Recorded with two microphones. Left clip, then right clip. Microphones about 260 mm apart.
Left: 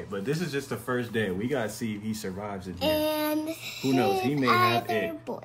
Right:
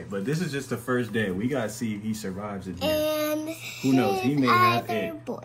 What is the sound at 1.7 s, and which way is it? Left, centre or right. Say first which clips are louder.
Speech: right 2 dB; centre.